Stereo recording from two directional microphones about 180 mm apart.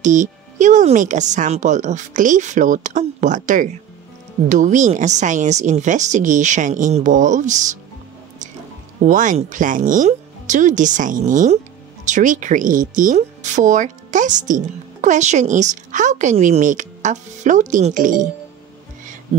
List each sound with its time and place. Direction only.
0.0 s speech: 45° right (ahead or behind)
9.0 s speech: 45° right (ahead or behind)